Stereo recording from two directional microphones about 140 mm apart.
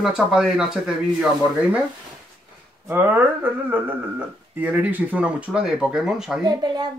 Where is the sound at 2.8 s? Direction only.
15° right (ahead or behind).